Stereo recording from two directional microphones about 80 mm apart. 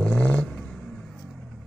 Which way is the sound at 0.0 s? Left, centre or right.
Left.